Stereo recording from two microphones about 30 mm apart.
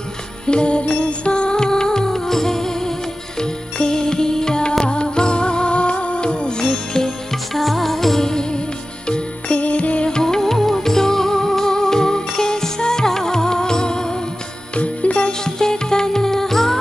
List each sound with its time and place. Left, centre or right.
0.5 s music: left
6.6 s music: centre
7.5 s music: centre
8.2 s music: centre
8.5 s music: left
9.6 s music: left
10.2 s music: centre
14.8 s music: left
15.4 s music: left